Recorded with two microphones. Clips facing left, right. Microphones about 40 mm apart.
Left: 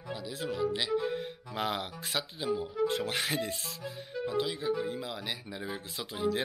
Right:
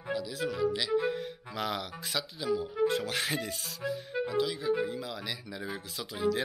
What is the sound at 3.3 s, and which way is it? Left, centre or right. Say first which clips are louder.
Speech: left 1 dB; left.